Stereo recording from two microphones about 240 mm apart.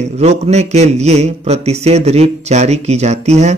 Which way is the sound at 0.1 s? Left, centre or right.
Right.